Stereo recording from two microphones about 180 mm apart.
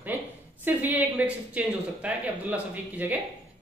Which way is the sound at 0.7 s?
10° right (ahead or behind).